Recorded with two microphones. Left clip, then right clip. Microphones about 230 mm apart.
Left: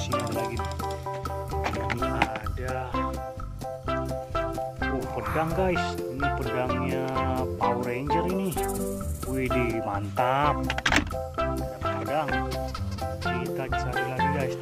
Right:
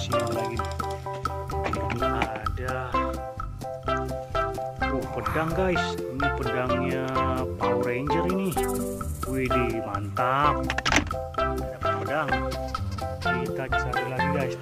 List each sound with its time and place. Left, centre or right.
0.1 s music: centre
2.7 s speech: centre
10.9 s music: centre